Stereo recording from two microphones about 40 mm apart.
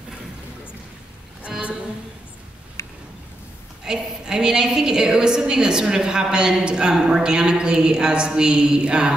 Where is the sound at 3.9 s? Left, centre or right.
Centre.